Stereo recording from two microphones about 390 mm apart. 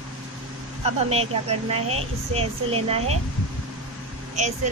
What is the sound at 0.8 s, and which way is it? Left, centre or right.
Speech, centre.